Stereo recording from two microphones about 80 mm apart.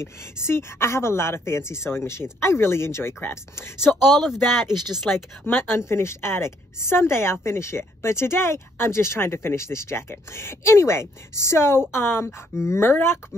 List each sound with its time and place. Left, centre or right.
0.0 s a woman's voice: left
4.2 s speech: centre
5.4 s a woman's voice: left